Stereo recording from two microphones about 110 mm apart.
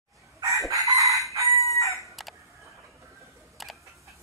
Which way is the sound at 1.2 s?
30° right (ahead or behind).